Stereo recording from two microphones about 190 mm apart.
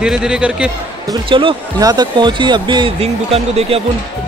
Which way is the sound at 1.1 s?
25° right (ahead or behind).